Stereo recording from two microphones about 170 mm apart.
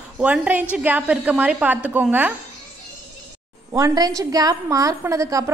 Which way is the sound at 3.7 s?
20° right (ahead or behind).